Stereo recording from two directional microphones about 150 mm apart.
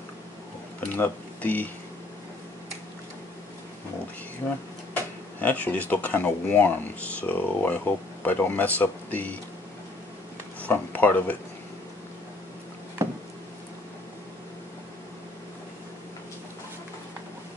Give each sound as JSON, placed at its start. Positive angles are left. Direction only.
{"t": 0.8, "sound": "speech", "side_deg": 10}
{"t": 4.4, "sound": "speech", "side_deg": 10}
{"t": 10.6, "sound": "speech", "side_deg": 10}
{"t": 13.0, "sound": "a sound", "side_deg": -20}